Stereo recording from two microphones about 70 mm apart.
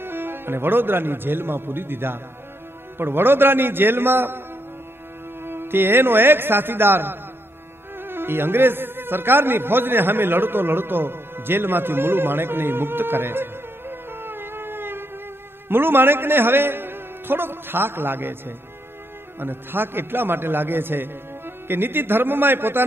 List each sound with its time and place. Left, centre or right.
0.0 s a man's voice: right
5.4 s a man's voice: right
19.4 s a man's voice: right